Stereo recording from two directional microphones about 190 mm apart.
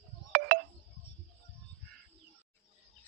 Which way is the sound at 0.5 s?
45° right (ahead or behind).